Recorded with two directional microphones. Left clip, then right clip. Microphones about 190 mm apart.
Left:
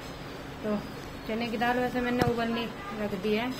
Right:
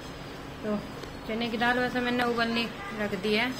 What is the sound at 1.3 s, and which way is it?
A woman's voice, centre (ahead or behind).